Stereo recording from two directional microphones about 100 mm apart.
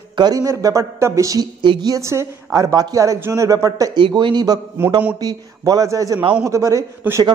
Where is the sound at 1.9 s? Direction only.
30° right (ahead or behind).